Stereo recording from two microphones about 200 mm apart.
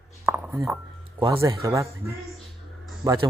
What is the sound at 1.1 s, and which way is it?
Speech, 15° right (ahead or behind).